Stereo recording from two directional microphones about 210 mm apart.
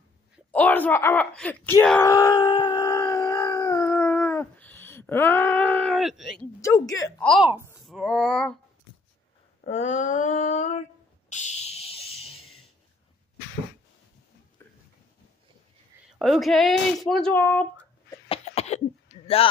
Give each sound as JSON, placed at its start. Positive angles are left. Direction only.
{"t": 0.5, "sound": "speech", "side_deg": 10}
{"t": 2.0, "sound": "howl", "side_deg": 15}
{"t": 6.6, "sound": "a woman's voice", "side_deg": 15}
{"t": 7.2, "sound": "speech", "side_deg": 5}
{"t": 7.4, "sound": "speech", "side_deg": -10}
{"t": 7.8, "sound": "speech", "side_deg": 0}
{"t": 9.6, "sound": "a sound", "side_deg": 35}
{"t": 14.6, "sound": "a sound", "side_deg": 10}
{"t": 16.1, "sound": "speech", "side_deg": 0}
{"t": 18.3, "sound": "cough", "side_deg": 30}